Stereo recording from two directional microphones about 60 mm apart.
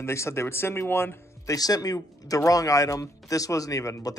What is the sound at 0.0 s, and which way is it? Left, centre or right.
Speech, left.